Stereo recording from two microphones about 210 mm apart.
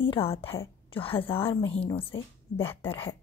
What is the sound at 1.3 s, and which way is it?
Speech, 10° left (ahead or behind).